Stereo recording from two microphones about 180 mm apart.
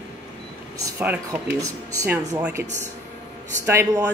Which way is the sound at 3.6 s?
15° right (ahead or behind).